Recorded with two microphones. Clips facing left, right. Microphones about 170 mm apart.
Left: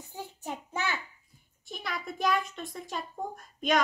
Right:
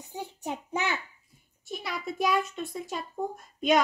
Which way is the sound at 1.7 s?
5° right (ahead or behind).